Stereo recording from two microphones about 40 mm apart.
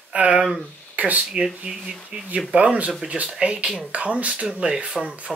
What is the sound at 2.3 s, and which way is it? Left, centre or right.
Speech, right.